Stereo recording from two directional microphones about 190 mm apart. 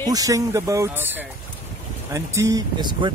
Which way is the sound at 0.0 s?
20° right (ahead or behind).